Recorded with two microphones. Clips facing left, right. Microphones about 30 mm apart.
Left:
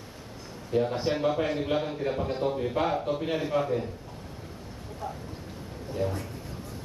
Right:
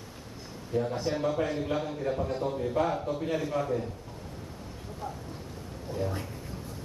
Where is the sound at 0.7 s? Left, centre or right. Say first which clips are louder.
Left 3 dB; left.